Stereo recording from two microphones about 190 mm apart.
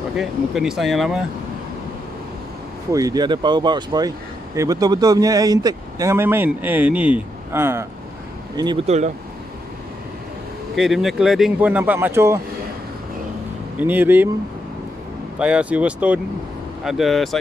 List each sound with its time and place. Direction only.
0.1 s speech: 5° right (ahead or behind)
2.9 s speech: 20° right (ahead or behind)
8.8 s speech: 35° right (ahead or behind)
10.8 s speech: centre (ahead or behind)
13.7 s speech: 10° right (ahead or behind)
15.3 s speech: 5° right (ahead or behind)